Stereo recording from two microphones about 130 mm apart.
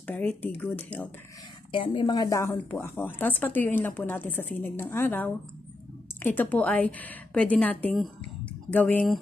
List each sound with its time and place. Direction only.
0.0 s speech: 10° left (ahead or behind)
1.7 s a woman's voice: 40° left (ahead or behind); by 2.5 s 25° left (ahead or behind)
2.5 s speech: 15° left (ahead or behind)